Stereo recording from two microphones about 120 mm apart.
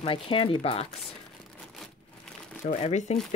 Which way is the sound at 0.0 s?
45° left (ahead or behind).